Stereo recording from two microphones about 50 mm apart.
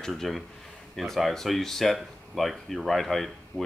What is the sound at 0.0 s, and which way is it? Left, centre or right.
Speech, centre.